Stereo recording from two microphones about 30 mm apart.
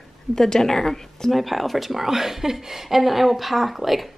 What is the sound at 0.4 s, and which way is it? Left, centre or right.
Speech, centre.